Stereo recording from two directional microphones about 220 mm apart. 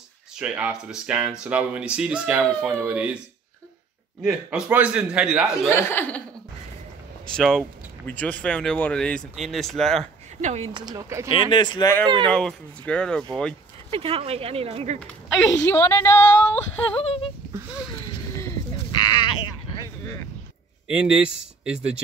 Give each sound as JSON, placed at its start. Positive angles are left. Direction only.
{"t": 0.4, "sound": "speech", "side_deg": -5}
{"t": 4.2, "sound": "speech", "side_deg": -5}
{"t": 5.7, "sound": "a woman's voice", "side_deg": 10}
{"t": 7.3, "sound": "speech", "side_deg": 5}
{"t": 10.4, "sound": "speech", "side_deg": -30}
{"t": 11.2, "sound": "speech", "side_deg": 20}
{"t": 12.3, "sound": "speech", "side_deg": 5}
{"t": 13.8, "sound": "speech", "side_deg": -25}
{"t": 15.5, "sound": "a woman's voice", "side_deg": 10}
{"t": 16.9, "sound": "speech", "side_deg": 25}
{"t": 19.2, "sound": "sheep", "side_deg": 20}
{"t": 20.9, "sound": "speech", "side_deg": -5}